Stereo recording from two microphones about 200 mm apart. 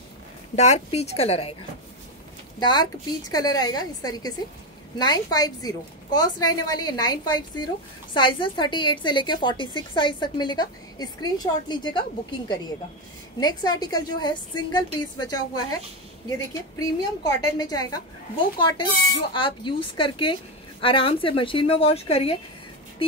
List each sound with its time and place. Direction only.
0.6 s a woman's voice: 35° left (ahead or behind)
2.6 s a woman's voice: 20° left (ahead or behind)
16.7 s a woman's voice: 20° left (ahead or behind)